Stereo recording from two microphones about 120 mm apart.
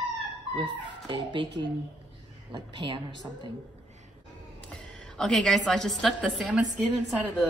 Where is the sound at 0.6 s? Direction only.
45° right (ahead or behind).